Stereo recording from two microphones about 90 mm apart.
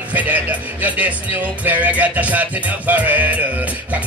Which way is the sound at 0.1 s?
15° right (ahead or behind).